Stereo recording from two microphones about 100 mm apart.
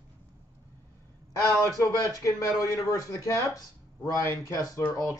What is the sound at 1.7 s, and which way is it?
Speech, 35° left (ahead or behind).